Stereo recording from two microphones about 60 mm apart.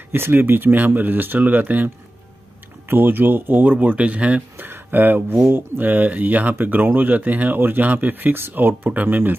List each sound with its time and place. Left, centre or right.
0.1 s speech: right
2.9 s speech: right
4.6 s speech: right
5.8 s speech: right